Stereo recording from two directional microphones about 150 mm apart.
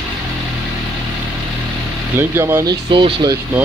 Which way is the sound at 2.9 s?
30° right (ahead or behind).